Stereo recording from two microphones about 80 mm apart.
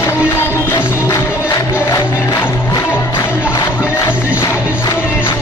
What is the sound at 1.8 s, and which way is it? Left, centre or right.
Music, left.